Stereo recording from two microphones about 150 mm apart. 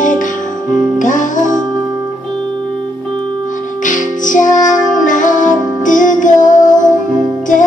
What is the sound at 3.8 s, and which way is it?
Music, 60° left (ahead or behind).